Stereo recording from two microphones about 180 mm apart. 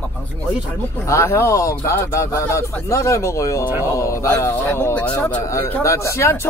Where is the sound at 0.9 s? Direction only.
15° left (ahead or behind).